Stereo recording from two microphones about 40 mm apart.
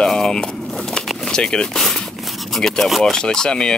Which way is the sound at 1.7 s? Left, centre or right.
Centre.